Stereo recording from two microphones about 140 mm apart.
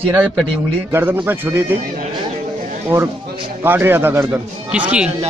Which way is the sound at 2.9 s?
20° right (ahead or behind).